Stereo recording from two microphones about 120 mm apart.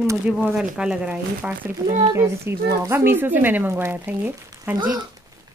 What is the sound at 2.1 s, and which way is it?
Speech, 25° right (ahead or behind).